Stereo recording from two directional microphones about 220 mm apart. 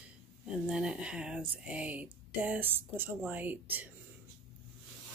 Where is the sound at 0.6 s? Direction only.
5° right (ahead or behind).